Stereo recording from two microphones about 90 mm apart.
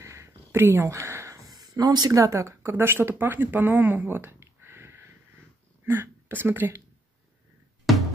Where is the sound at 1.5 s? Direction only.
50° right (ahead or behind).